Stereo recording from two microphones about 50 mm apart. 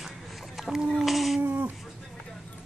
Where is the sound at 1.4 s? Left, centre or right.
Right.